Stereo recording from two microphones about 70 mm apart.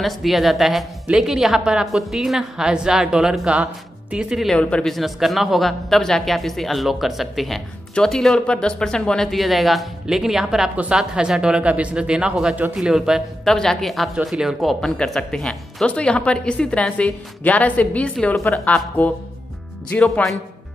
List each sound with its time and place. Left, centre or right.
0.0 s a woman's voice: centre
4.6 s speech: centre
4.9 s a woman's voice: centre
13.4 s speech: centre
18.2 s speech: centre
18.7 s speech: left